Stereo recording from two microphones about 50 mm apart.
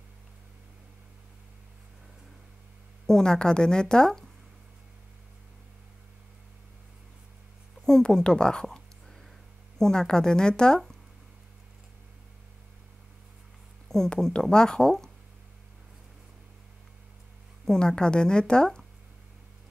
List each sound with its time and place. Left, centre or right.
3.1 s a woman's voice: centre
7.8 s speech: centre
9.8 s a woman's voice: centre
13.8 s a sound: centre
14.2 s a woman's voice: centre
17.6 s a woman's voice: centre